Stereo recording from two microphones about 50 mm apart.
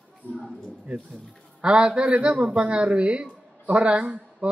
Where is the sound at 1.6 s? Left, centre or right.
Centre.